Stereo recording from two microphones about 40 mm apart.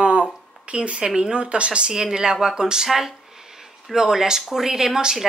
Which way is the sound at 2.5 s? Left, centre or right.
Centre.